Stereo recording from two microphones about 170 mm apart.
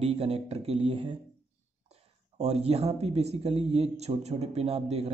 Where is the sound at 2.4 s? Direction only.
40° right (ahead or behind).